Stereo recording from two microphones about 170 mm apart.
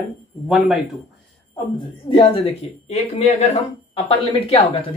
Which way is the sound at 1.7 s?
30° left (ahead or behind).